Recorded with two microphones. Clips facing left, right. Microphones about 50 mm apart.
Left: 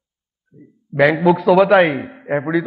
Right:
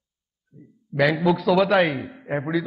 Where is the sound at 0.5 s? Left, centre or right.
Left.